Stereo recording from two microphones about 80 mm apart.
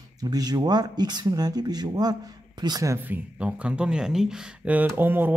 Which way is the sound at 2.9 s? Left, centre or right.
Right.